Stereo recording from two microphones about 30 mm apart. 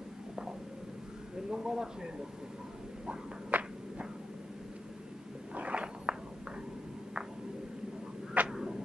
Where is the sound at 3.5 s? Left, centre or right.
Right.